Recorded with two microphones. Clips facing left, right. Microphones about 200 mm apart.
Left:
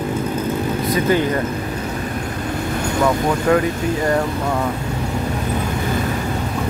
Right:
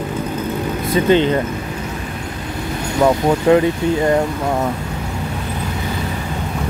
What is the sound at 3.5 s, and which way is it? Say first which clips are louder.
Speech: right 4 dB; 20° right (ahead or behind).